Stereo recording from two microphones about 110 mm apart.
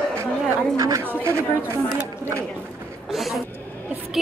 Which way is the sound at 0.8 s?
25° right (ahead or behind).